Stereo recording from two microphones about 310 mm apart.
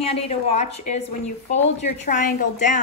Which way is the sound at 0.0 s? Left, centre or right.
Centre.